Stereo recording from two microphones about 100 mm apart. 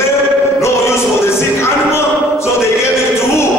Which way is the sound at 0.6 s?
25° left (ahead or behind).